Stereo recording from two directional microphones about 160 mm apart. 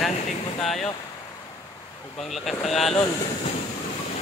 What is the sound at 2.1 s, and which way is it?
Speech, centre (ahead or behind).